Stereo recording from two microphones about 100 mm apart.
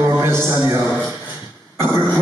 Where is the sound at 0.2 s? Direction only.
25° right (ahead or behind).